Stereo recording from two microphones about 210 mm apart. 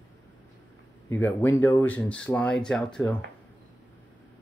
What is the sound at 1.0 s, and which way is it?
Speech, 10° left (ahead or behind).